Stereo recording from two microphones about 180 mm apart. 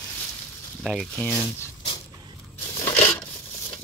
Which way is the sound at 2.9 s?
10° left (ahead or behind).